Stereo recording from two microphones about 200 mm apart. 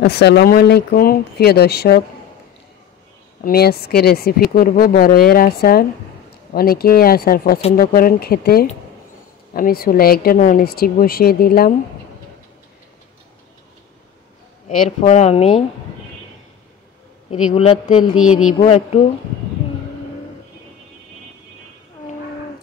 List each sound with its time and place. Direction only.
0.0 s speech: 55° left (ahead or behind)
3.4 s speech: 50° left (ahead or behind)
15.0 s speech: 35° left (ahead or behind)
17.5 s speech: 35° left (ahead or behind)